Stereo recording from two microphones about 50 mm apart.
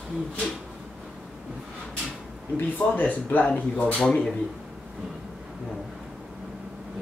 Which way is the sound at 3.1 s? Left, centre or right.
Left.